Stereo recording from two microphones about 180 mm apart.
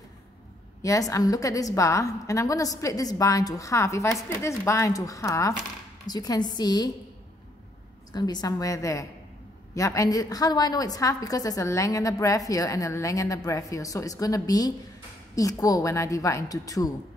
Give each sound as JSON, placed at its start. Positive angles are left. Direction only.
{"t": 0.8, "sound": "a woman's voice", "side_deg": 20}
{"t": 8.1, "sound": "a woman's voice", "side_deg": 20}